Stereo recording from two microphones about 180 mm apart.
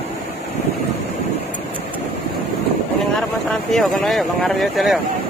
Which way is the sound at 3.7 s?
Centre (ahead or behind).